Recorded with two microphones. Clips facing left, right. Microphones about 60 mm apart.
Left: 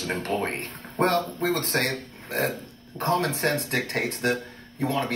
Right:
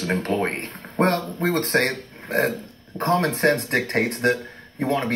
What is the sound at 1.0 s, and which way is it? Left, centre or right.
Speech, right.